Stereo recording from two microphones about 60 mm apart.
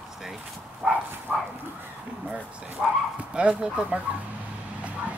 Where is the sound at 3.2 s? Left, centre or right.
Centre.